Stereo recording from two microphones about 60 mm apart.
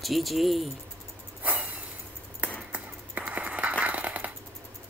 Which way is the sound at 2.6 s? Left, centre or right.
Right.